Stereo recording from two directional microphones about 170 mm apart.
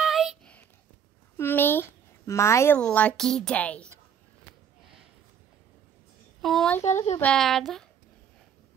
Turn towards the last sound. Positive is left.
turn(degrees=0)  # may be behind; listen again after turning